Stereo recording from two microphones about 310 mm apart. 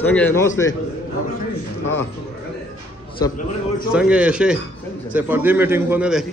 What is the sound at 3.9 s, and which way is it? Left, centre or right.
A man's voice, centre.